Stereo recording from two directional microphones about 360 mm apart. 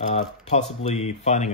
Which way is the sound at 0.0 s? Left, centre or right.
Centre.